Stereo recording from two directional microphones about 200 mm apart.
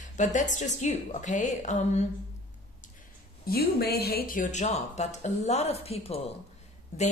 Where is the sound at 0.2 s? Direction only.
40° left (ahead or behind).